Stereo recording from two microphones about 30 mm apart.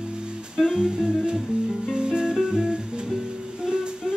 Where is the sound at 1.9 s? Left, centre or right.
Right.